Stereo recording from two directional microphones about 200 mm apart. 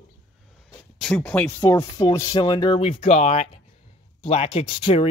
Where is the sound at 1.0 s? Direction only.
5° left (ahead or behind); by 5.1 s 30° left (ahead or behind).